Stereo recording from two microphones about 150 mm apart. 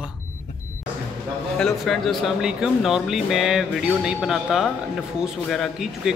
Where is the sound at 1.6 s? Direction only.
Centre (ahead or behind).